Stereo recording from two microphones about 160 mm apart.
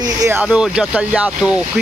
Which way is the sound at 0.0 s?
20° right (ahead or behind).